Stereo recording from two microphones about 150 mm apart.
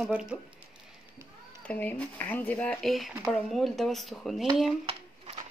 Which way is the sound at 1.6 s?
10° left (ahead or behind).